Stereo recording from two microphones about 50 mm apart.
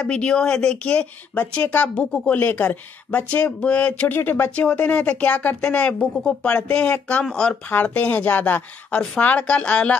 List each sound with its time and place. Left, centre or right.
0.0 s speech: left
1.5 s speech: left
2.0 s speech: left
2.3 s speech: left
4.1 s speech: left
4.6 s speech: left
7.2 s speech: centre
7.7 s speech: left
8.9 s speech: centre